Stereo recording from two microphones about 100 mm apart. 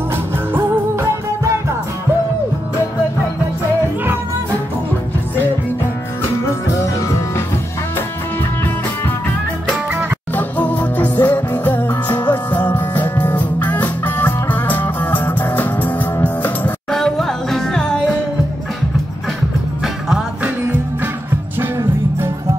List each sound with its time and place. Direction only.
10.3 s music: 15° left (ahead or behind)
16.9 s music: 5° left (ahead or behind)
19.8 s music: 5° right (ahead or behind)
21.5 s music: 25° right (ahead or behind)